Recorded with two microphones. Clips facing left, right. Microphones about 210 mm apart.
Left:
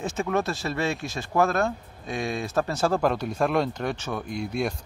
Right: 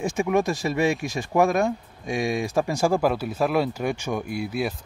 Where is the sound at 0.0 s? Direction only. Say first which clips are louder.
Right 4 dB; 15° right (ahead or behind).